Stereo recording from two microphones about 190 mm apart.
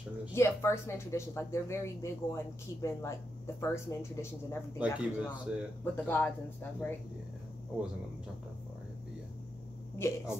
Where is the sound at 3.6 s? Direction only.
15° left (ahead or behind).